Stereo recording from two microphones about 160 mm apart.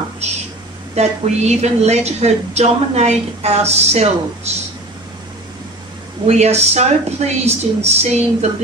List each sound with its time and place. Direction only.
0.2 s a sound: 45° right (ahead or behind)
0.9 s a woman's voice: 45° right (ahead or behind)
6.2 s a woman's voice: 45° right (ahead or behind)